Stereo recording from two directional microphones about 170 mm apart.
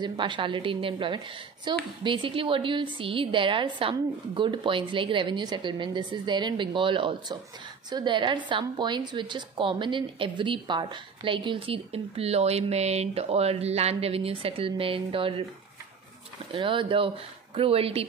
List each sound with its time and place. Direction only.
0.0 s a woman's voice: 30° right (ahead or behind)
16.5 s a woman's voice: 30° right (ahead or behind)